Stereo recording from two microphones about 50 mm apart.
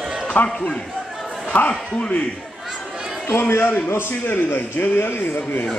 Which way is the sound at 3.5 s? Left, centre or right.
Left.